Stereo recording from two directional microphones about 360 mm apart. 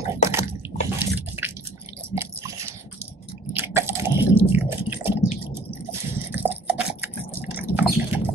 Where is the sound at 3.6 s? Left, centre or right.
Centre.